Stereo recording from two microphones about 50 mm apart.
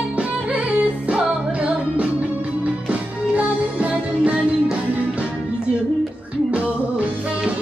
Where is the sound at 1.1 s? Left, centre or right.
Right.